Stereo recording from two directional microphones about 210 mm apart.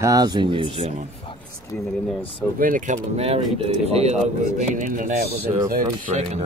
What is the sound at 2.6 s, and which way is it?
Speech, 40° right (ahead or behind).